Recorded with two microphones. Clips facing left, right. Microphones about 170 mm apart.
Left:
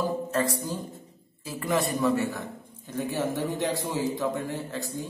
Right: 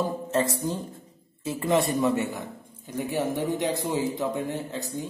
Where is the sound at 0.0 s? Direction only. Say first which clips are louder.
Right 1 dB; 25° right (ahead or behind).